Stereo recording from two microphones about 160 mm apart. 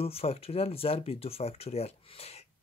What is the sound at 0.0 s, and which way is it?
Speech, 40° left (ahead or behind).